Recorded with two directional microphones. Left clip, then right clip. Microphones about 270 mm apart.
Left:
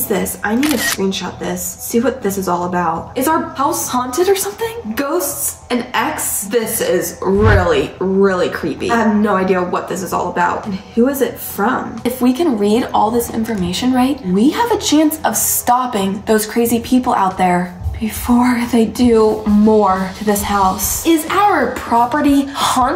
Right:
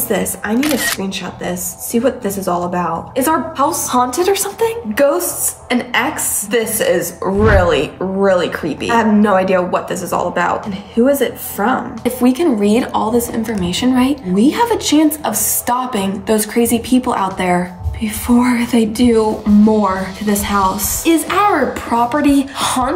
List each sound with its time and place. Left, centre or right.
0.1 s speech: centre
6.5 s speech: centre
11.1 s speech: centre